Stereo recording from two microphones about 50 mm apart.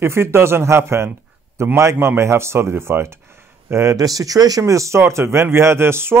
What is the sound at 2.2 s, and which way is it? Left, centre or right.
A man's voice, right.